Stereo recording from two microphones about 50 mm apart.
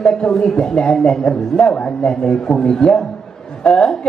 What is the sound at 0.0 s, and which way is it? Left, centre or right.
A man's voice, centre.